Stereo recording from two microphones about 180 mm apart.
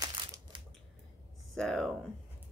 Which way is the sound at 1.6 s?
5° left (ahead or behind).